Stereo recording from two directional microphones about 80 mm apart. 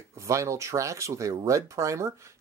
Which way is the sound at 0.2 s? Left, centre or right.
Right.